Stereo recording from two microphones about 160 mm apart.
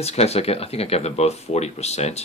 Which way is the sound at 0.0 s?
40° left (ahead or behind).